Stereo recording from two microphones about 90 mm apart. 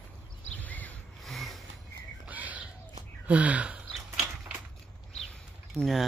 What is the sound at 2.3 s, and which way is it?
Bird, 15° right (ahead or behind).